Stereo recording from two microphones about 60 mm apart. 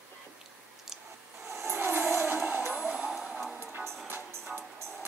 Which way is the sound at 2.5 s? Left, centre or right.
Right.